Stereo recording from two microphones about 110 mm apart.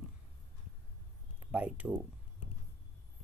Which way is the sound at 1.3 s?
15° right (ahead or behind).